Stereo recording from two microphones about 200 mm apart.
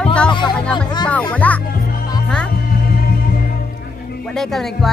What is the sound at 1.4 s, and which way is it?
Speech, 5° left (ahead or behind).